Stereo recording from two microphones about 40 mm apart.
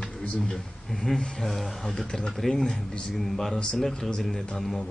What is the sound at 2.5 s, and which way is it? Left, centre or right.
Male singing, centre.